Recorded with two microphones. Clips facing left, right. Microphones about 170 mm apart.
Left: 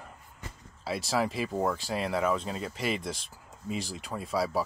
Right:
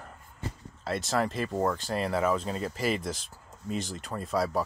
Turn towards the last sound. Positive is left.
turn(degrees=0)  # may be behind; listen again after turning